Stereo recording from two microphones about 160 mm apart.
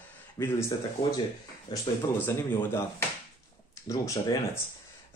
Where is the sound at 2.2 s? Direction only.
15° left (ahead or behind).